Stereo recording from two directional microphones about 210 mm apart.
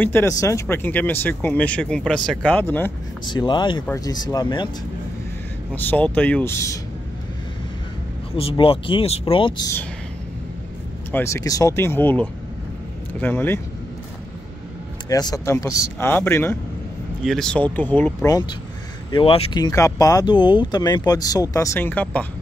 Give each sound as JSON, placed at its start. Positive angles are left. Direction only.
{"t": 0.0, "sound": "speech", "side_deg": 10}
{"t": 3.3, "sound": "speech", "side_deg": 20}
{"t": 5.8, "sound": "speech", "side_deg": 10}
{"t": 8.4, "sound": "speech", "side_deg": 25}
{"t": 11.1, "sound": "speech", "side_deg": 10}
{"t": 15.0, "sound": "speech", "side_deg": 20}